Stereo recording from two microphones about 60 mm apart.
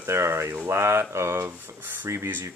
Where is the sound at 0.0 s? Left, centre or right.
Right.